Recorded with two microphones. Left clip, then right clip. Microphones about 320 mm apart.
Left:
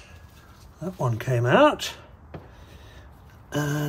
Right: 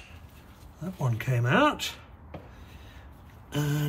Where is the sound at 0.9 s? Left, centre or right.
Centre.